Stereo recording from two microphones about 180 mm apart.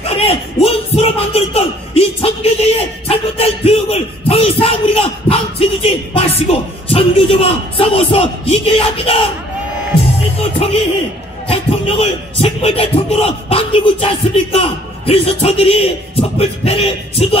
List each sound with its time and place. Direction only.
0.0 s a man's voice: 35° left (ahead or behind)
11.4 s a man's voice: 30° left (ahead or behind)